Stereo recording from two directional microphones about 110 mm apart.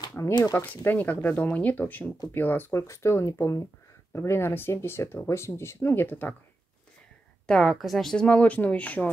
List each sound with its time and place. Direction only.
0.2 s speech: 15° left (ahead or behind)
7.4 s speech: 5° left (ahead or behind)